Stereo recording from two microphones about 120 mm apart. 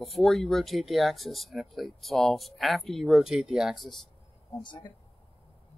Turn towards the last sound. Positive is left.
turn(degrees=40)  # may be behind; listen again after turning